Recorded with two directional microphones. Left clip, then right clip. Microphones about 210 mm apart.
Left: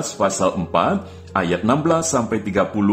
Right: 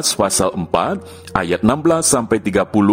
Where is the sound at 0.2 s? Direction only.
50° right (ahead or behind).